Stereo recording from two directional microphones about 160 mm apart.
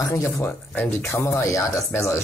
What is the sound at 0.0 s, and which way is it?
Speech, 20° left (ahead or behind).